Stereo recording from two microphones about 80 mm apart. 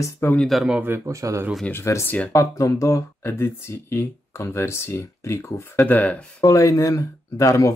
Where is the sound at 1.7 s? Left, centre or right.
Left.